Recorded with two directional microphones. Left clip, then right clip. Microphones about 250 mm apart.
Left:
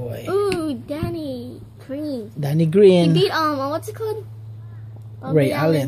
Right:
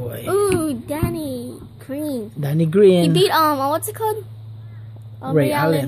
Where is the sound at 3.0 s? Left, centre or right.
Right.